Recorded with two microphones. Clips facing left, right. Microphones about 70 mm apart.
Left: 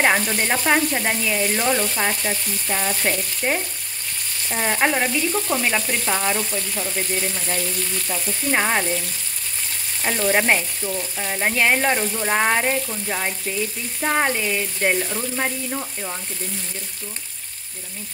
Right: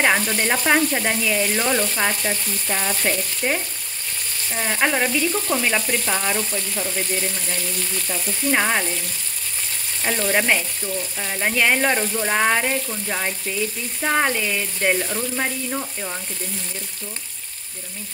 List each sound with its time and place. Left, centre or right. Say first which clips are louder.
0.0 s frying: even; centre
0.5 s frying: right 1 dB; centre
1.2 s frying: right 1 dB; centre
1.5 s frying: even; centre
8.1 s frying: right 1 dB; centre
10.0 s frying: left 1 dB; centre
12.9 s frying: even; centre
14.3 s speech: even; centre
15.0 s frying: even; centre